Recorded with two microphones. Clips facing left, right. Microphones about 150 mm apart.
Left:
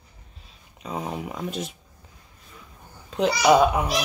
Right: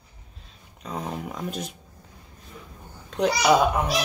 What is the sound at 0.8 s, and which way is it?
Speech, 5° left (ahead or behind).